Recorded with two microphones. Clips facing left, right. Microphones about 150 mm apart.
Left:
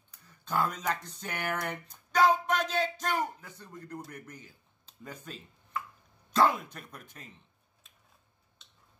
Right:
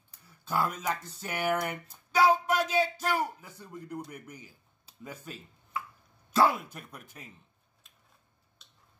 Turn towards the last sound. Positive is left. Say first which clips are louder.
# right 1 dB
turn(degrees=-10)  # may be behind; listen again after turning